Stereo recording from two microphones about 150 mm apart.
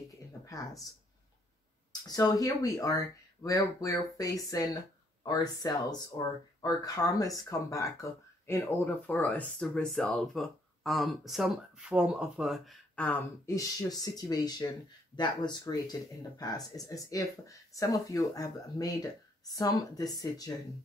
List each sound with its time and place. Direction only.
0.5 s speech: 20° left (ahead or behind)
2.0 s speech: 25° left (ahead or behind); by 13.0 s centre (ahead or behind)
13.0 s speech: 15° left (ahead or behind)